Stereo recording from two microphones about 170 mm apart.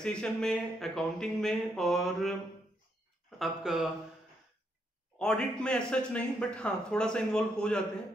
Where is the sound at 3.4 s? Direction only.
Centre (ahead or behind).